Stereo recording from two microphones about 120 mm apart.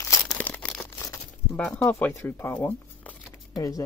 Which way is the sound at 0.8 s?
20° left (ahead or behind).